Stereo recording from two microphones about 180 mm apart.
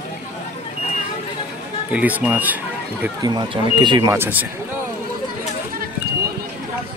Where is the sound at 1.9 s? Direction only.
10° right (ahead or behind).